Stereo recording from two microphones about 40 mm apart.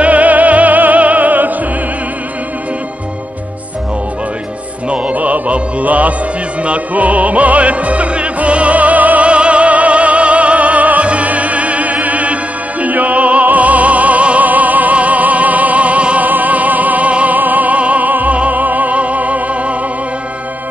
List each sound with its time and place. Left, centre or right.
0.0 s music: right
4.8 s music: right
9.3 s opera: right
12.8 s music: right
16.3 s music: right
17.4 s music: right